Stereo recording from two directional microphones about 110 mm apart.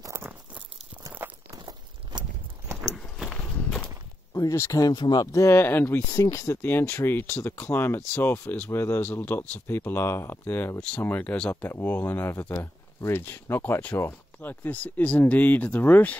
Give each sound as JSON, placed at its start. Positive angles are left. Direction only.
{"t": 0.0, "sound": "a sound", "side_deg": -25}
{"t": 1.5, "sound": "walk", "side_deg": -35}
{"t": 2.8, "sound": "horse", "side_deg": 10}
{"t": 3.2, "sound": "walk", "side_deg": -5}
{"t": 4.3, "sound": "speech", "side_deg": 30}
{"t": 6.1, "sound": "speech", "side_deg": 35}